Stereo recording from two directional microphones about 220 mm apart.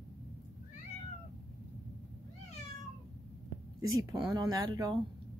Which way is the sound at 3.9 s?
15° right (ahead or behind).